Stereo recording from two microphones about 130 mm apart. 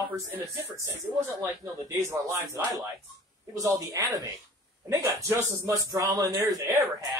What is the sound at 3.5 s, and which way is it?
A man's voice, 25° right (ahead or behind).